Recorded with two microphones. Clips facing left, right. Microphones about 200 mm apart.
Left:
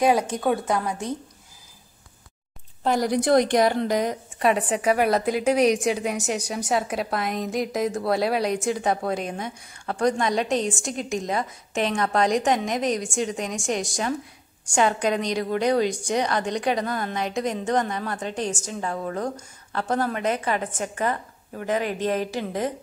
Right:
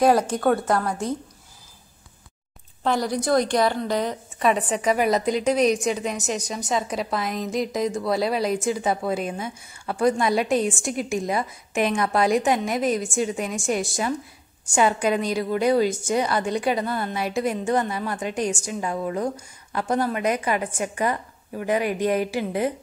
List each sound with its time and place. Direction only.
0.0 s a woman's voice: 15° left (ahead or behind)
2.8 s speech: 10° left (ahead or behind)
3.1 s a woman's voice: 20° left (ahead or behind); by 22.7 s 10° right (ahead or behind)